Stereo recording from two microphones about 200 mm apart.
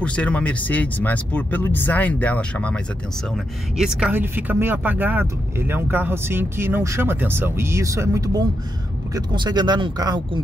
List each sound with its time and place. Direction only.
0.0 s speech: 5° left (ahead or behind); by 10.4 s 20° right (ahead or behind)